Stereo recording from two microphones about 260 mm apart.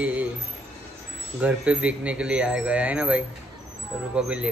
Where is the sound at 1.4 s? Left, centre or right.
Centre.